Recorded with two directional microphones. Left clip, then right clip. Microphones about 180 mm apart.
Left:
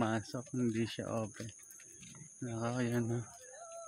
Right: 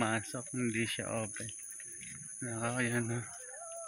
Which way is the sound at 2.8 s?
20° left (ahead or behind).